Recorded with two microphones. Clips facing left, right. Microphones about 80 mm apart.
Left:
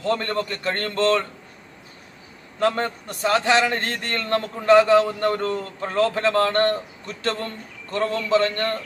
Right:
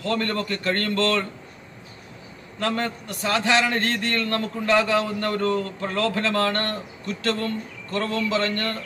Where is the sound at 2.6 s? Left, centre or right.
Left.